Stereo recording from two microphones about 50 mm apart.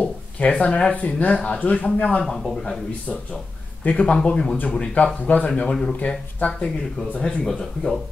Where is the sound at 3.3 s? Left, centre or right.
Left.